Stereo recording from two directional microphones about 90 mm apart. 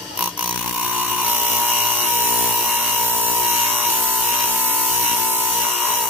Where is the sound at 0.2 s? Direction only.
15° right (ahead or behind).